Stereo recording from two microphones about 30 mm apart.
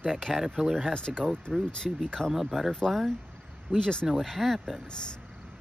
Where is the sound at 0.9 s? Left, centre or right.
Left.